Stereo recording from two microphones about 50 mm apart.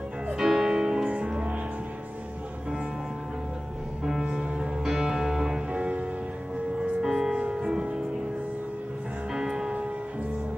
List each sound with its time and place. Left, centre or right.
0.3 s music: centre
4.0 s music: centre
6.8 s music: centre
9.3 s music: centre